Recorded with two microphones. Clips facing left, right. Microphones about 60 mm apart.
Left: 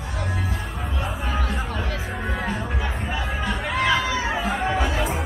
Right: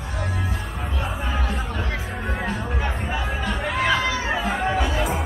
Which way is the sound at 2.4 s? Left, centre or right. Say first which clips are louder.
Right 1 dB; centre.